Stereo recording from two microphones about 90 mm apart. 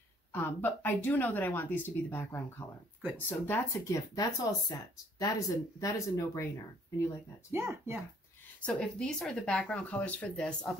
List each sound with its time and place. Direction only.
0.3 s speech: 25° left (ahead or behind)
4.1 s speech: 45° left (ahead or behind)
5.8 s speech: 35° left (ahead or behind)
7.5 s speech: 30° right (ahead or behind)
8.5 s speech: 15° left (ahead or behind)